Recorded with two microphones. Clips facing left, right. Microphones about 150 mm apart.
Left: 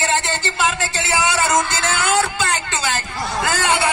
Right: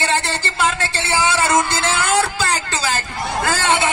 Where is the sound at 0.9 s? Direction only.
30° right (ahead or behind).